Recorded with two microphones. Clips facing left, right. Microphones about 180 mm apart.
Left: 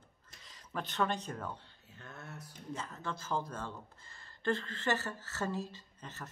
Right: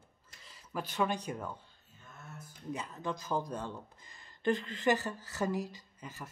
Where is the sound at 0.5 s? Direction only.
10° right (ahead or behind).